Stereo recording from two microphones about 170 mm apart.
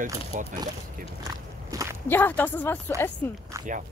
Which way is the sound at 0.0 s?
45° right (ahead or behind).